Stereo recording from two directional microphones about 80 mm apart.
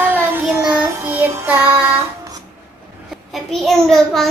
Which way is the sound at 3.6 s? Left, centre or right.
Centre.